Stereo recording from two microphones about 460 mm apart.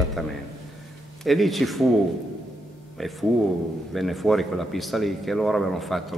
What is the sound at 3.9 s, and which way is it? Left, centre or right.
Speech, centre.